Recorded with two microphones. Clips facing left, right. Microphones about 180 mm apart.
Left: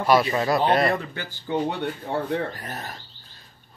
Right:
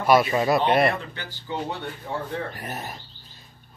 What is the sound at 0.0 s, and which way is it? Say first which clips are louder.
Speech: right 1 dB; 5° right (ahead or behind).